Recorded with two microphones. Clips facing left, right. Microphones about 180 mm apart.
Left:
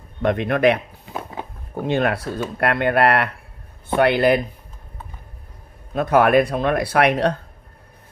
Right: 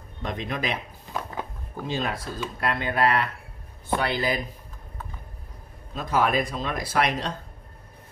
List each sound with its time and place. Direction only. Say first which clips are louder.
0.2 s speech: left 12 dB; 65° left (ahead or behind)
1.8 s speech: left 9 dB; 65° left (ahead or behind)
5.9 s speech: left 9 dB; 65° left (ahead or behind)